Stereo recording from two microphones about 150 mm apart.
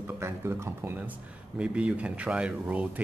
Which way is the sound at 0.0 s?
15° right (ahead or behind).